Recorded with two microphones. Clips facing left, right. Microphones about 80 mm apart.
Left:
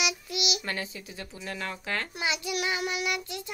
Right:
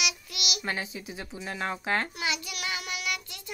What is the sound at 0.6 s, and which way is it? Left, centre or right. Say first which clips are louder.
Speech: right 1 dB; centre.